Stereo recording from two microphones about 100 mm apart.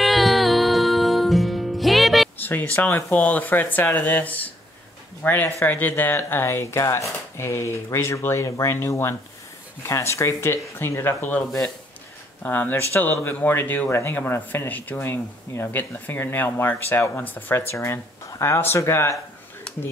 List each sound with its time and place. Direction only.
0.0 s music: centre (ahead or behind)
2.3 s speech: 20° left (ahead or behind)
12.4 s speech: 20° left (ahead or behind)